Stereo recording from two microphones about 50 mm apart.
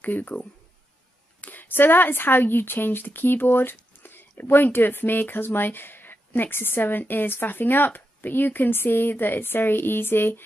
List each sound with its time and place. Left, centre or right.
0.0 s speech: left